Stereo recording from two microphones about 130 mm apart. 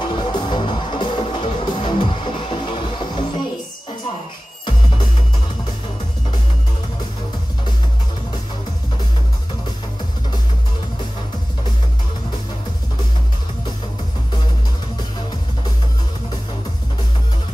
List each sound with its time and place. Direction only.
0.0 s music: 40° left (ahead or behind)